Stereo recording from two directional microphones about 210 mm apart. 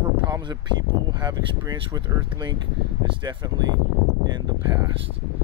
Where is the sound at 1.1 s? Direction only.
20° right (ahead or behind).